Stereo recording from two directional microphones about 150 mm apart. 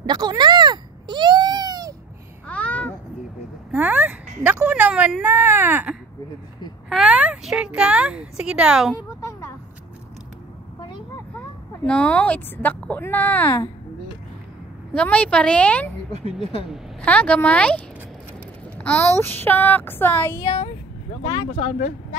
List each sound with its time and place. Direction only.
0.0 s baby cry: 25° right (ahead or behind)
2.4 s babbling: 10° left (ahead or behind)
3.7 s a woman's voice: 10° right (ahead or behind)
11.8 s speech: 10° left (ahead or behind)
15.0 s speech: 10° left (ahead or behind)
17.0 s speech: 10° left (ahead or behind)
20.4 s speech: 40° left (ahead or behind)